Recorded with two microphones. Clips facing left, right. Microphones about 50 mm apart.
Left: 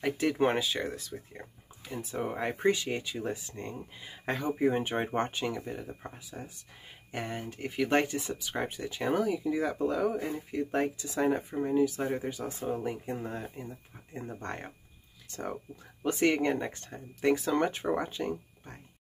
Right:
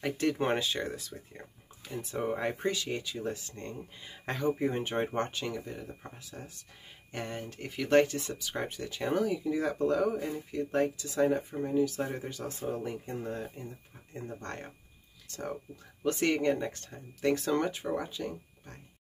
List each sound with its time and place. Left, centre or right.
0.0 s speech: centre
2.6 s speech: left
3.4 s speech: centre
10.5 s speech: left
16.0 s speech: centre
17.3 s speech: centre
17.6 s speech: left